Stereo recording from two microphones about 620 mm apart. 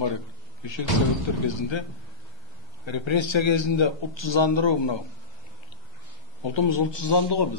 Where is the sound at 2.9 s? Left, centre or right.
Left.